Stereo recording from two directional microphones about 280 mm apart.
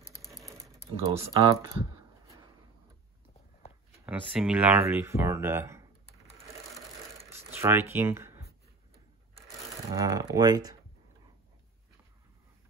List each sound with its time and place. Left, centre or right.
0.2 s sewing machine: centre
1.0 s speech: centre
4.0 s speech: centre
7.2 s a sound: centre
9.9 s speech: centre